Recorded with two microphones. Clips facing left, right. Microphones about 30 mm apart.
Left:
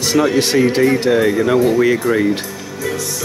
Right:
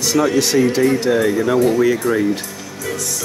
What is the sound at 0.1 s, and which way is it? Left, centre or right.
Speech, left.